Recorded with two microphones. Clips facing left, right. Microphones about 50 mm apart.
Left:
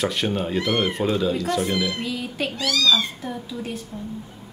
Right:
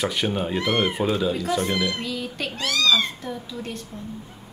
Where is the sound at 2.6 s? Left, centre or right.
Right.